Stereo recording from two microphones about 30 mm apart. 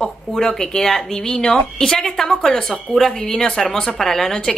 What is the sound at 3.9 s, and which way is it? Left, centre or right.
Speech, centre.